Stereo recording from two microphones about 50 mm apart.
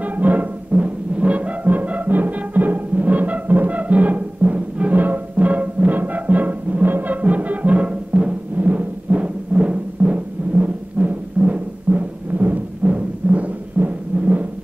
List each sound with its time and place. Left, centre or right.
0.0 s music: right